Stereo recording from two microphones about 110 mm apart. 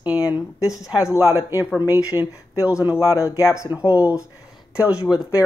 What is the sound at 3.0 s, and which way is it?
Speech, 30° left (ahead or behind).